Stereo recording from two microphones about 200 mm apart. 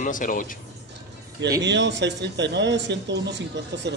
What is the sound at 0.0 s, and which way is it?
Speech, 40° left (ahead or behind).